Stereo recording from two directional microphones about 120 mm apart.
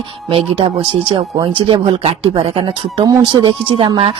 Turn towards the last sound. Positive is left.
turn(degrees=-45)  # may be behind; listen again after turning